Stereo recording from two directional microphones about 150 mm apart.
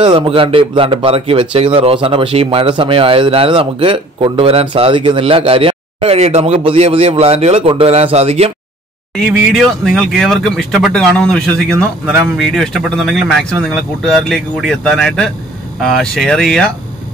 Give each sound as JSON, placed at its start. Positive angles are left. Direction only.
{"t": 0.0, "sound": "speech", "side_deg": -35}
{"t": 9.2, "sound": "speech", "side_deg": 0}